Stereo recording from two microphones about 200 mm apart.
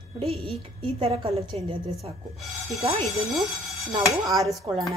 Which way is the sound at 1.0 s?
30° right (ahead or behind).